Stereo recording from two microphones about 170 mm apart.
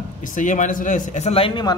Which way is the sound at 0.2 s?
50° left (ahead or behind).